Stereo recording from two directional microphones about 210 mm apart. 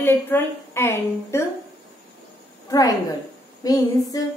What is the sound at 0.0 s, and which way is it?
A woman's voice, 10° left (ahead or behind).